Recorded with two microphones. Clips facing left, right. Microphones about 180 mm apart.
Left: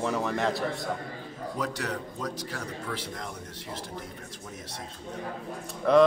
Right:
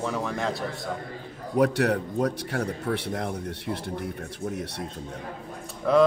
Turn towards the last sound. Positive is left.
turn(degrees=0)  # may be behind; listen again after turning